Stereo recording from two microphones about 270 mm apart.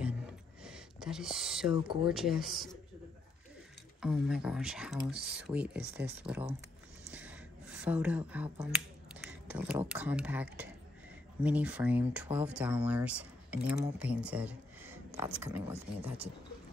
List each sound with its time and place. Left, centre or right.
0.7 s a sound: centre
1.7 s speech: centre
2.0 s speech: centre
4.0 s speech: centre